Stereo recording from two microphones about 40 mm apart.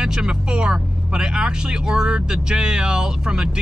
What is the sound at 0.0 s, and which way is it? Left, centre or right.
Speech, centre.